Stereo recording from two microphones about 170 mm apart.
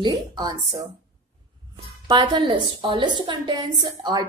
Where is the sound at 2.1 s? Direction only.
25° right (ahead or behind).